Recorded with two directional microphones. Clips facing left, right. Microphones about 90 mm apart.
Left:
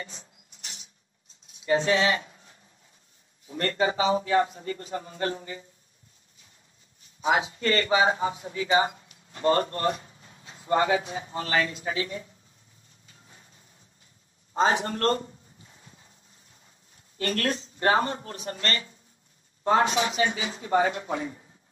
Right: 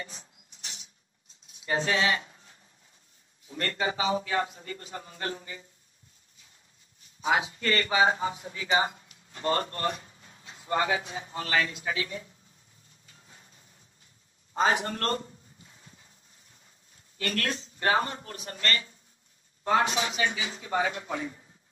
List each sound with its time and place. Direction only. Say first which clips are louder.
1.7 s speech: left 4 dB; 35° left (ahead or behind)
7.2 s speech: left 2 dB; 30° left (ahead or behind)
13.0 s a sound: left 1 dB; 35° left (ahead or behind)
16.9 s speech: left 3 dB; 35° left (ahead or behind)